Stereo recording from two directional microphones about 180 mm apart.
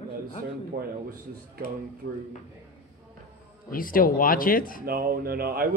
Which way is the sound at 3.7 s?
50° left (ahead or behind).